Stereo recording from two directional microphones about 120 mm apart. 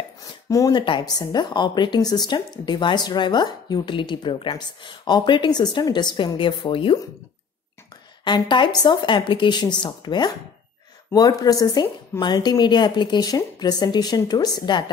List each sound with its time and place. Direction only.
0.5 s speech: 25° left (ahead or behind)
0.7 s a woman's voice: 40° left (ahead or behind)
8.2 s a woman's voice: 40° left (ahead or behind)